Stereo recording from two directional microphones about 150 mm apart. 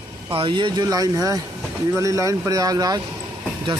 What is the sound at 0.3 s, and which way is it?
Speech, 35° right (ahead or behind).